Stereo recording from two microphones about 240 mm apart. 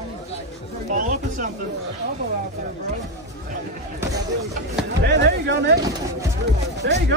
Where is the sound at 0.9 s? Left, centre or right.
Right.